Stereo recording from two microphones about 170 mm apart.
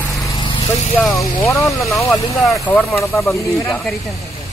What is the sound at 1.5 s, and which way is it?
Speech, 15° left (ahead or behind).